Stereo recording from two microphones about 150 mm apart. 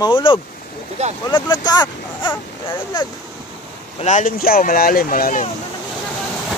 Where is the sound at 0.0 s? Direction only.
35° left (ahead or behind).